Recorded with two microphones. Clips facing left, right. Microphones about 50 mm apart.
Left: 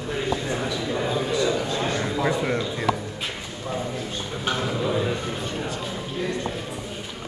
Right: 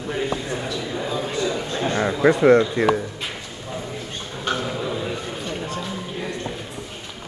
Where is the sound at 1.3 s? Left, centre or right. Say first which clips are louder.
Left 1 dB; right.